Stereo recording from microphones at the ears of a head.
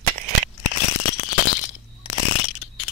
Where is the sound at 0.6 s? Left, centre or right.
Left.